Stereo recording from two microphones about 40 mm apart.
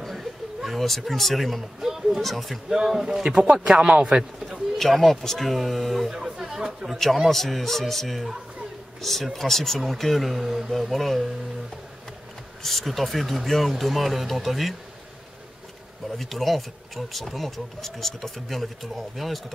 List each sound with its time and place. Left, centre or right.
0.1 s a sound: centre
1.8 s speech: centre
2.2 s speech: centre
2.7 s speech: centre
3.3 s speech: right
3.5 s speech: centre
4.7 s speech: centre
6.1 s speech: centre
7.2 s speech: centre
12.6 s speech: centre
16.2 s speech: centre